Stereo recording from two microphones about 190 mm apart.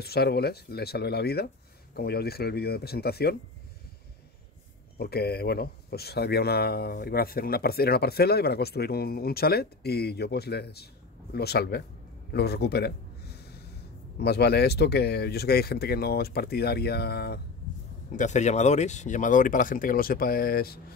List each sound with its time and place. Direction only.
0.0 s speech: 55° left (ahead or behind)
4.9 s speech: 55° left (ahead or behind)
18.1 s speech: 40° left (ahead or behind)